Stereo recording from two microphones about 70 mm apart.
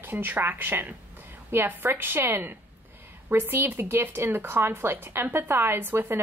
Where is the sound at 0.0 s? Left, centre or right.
Right.